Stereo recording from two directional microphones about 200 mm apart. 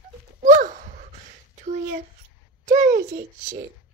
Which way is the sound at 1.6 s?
35° right (ahead or behind).